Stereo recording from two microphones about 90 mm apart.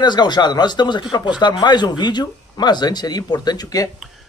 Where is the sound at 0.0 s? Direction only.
55° left (ahead or behind).